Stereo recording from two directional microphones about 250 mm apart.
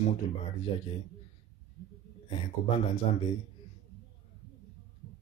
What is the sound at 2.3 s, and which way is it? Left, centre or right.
Speech, left.